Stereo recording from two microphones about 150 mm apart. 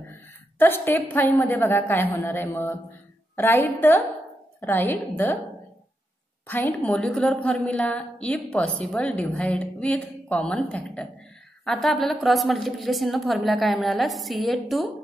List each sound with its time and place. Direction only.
0.1 s a woman's voice: 15° left (ahead or behind)
6.4 s a woman's voice: 15° left (ahead or behind)